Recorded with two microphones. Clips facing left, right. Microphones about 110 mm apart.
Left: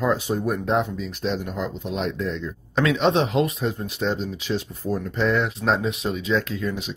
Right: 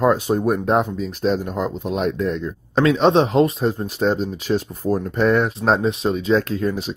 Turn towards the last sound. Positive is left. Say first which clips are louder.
# right 5 dB
turn(degrees=-40)  # may be behind; listen again after turning